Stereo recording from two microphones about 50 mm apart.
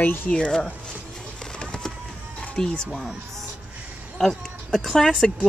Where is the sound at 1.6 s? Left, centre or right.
Centre.